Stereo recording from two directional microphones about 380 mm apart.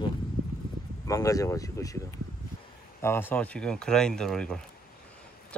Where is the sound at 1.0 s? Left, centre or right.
Centre.